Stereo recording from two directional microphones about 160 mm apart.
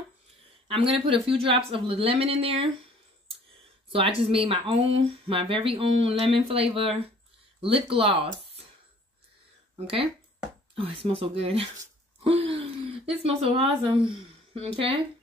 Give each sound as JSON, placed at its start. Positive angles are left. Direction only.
{"t": 0.7, "sound": "speech", "side_deg": -35}
{"t": 3.9, "sound": "speech", "side_deg": -35}
{"t": 9.8, "sound": "speech", "side_deg": -40}